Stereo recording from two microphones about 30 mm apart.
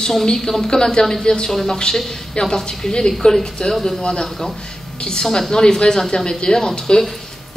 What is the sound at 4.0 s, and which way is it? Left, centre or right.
Speech, left.